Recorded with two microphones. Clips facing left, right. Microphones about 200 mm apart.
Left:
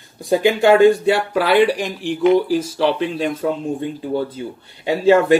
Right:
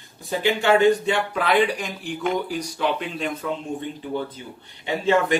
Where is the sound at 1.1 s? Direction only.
35° left (ahead or behind).